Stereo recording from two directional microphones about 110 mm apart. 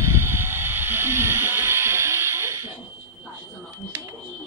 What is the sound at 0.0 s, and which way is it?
Vehicle, 25° right (ahead or behind).